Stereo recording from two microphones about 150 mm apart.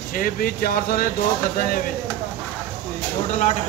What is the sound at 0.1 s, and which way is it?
Speech, 75° left (ahead or behind).